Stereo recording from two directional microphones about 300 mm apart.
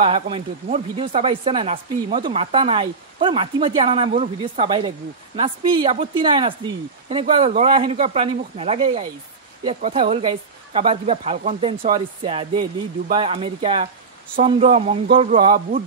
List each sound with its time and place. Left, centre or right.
0.0 s speech: centre